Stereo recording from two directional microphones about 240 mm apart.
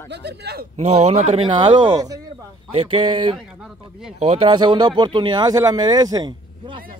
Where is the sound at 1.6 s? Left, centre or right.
Centre.